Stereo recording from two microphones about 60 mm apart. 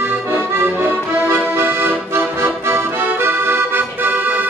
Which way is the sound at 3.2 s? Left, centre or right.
Right.